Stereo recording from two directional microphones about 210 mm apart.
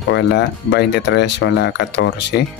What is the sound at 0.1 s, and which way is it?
Speech, 55° left (ahead or behind).